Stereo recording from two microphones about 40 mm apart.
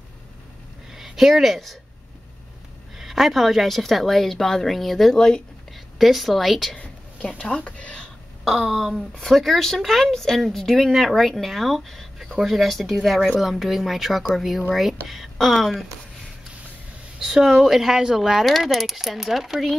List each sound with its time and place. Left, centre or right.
0.9 s speech: centre
3.0 s a woman's voice: centre
7.3 s speech: left
8.5 s a woman's voice: centre
17.2 s speech: centre
18.5 s a woman's voice: centre